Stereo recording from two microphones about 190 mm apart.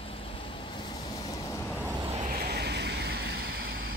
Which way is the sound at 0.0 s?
30° left (ahead or behind).